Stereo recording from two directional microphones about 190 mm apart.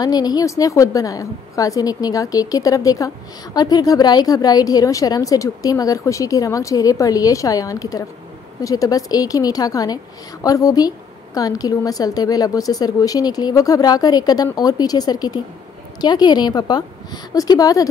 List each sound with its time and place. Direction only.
0.0 s a woman's voice: 20° left (ahead or behind)